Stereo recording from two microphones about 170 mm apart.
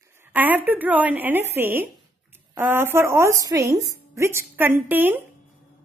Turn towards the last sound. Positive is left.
turn(degrees=-10)  # may be behind; listen again after turning